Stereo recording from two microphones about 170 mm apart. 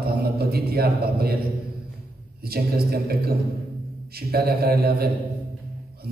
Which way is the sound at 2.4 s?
65° right (ahead or behind).